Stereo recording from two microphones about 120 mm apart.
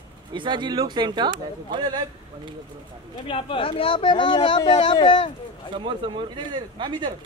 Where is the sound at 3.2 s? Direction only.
45° left (ahead or behind).